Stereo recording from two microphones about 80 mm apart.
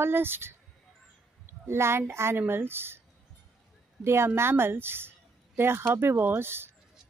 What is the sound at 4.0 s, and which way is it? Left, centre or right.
Speech, right.